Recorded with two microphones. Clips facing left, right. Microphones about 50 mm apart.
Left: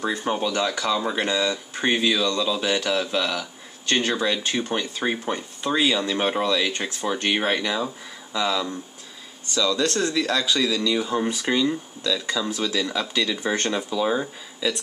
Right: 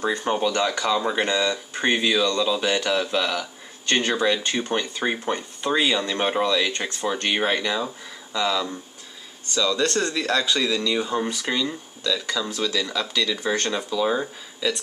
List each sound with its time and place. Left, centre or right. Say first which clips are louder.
0.0 s speech: right 2 dB; centre
9.6 s speech: even; centre
11.2 s speech: left 3 dB; centre
14.0 s speech: even; centre